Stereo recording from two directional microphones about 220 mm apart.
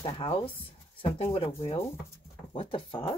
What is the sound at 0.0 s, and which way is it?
Speech, 25° left (ahead or behind).